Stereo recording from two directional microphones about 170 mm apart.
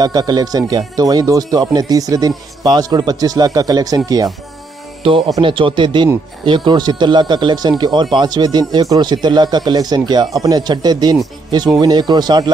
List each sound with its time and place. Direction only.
0.0 s speech: 25° right (ahead or behind)